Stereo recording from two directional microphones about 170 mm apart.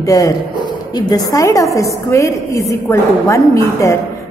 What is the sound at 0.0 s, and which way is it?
A woman's voice, 20° left (ahead or behind).